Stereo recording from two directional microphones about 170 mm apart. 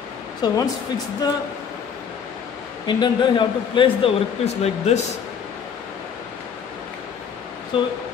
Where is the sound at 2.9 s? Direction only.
30° left (ahead or behind).